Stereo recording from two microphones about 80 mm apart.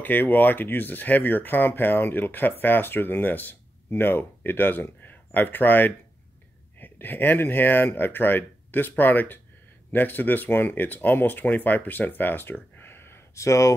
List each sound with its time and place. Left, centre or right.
0.0 s speech: left